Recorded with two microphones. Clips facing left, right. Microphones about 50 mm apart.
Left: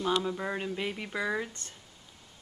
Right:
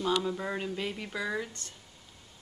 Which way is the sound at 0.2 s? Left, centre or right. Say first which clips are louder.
Even; centre.